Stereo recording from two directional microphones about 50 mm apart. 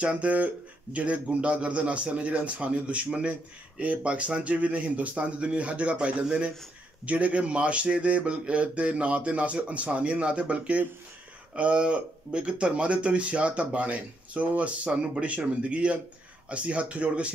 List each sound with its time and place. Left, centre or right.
0.0 s speech: right